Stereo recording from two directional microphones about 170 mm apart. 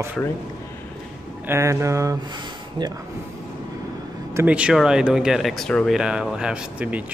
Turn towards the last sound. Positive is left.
turn(degrees=-10)  # may be behind; listen again after turning